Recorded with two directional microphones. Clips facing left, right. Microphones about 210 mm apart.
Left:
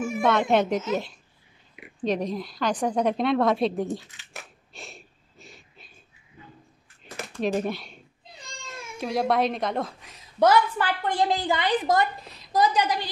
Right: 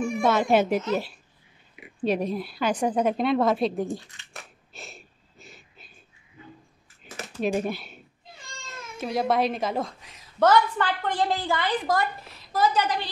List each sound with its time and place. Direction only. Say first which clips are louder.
0.0 s a woman's voice: even; 5° left (ahead or behind)
7.2 s speech: even; 5° right (ahead or behind)
8.3 s baby cry: left 2 dB; 20° left (ahead or behind)
8.9 s a woman's voice: even; centre (ahead or behind)
10.4 s a woman's voice: even; 10° left (ahead or behind)